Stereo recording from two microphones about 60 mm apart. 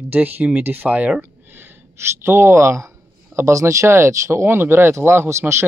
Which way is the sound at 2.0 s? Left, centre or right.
Right.